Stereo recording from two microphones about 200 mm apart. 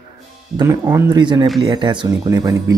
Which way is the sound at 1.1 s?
20° right (ahead or behind).